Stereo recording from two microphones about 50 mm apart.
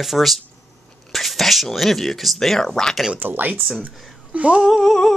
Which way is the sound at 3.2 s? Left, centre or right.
Right.